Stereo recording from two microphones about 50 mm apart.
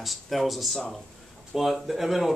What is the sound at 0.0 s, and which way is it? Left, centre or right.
Speech, centre.